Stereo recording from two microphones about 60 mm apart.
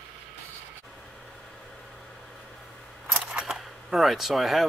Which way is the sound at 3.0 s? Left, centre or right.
Centre.